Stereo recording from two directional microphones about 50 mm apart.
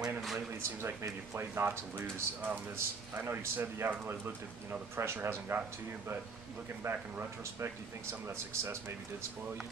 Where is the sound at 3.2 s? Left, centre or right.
Right.